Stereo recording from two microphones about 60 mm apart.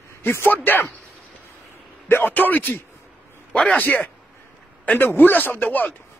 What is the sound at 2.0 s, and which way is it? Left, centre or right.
Speech, left.